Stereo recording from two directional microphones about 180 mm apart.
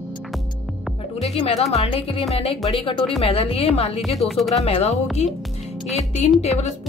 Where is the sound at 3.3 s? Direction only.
35° left (ahead or behind).